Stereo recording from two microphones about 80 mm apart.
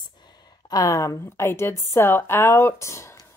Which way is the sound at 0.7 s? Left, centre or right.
Left.